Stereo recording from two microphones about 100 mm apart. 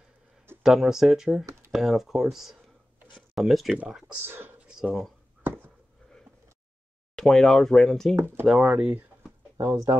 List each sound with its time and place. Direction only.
0.6 s speech: 5° right (ahead or behind)
1.4 s speech: 30° right (ahead or behind)
1.7 s speech: centre (ahead or behind)
4.2 s whispering: 20° right (ahead or behind)
4.7 s speech: 5° right (ahead or behind)
7.2 s speech: 5° left (ahead or behind)
8.5 s speech: 5° right (ahead or behind)
9.6 s speech: 25° right (ahead or behind)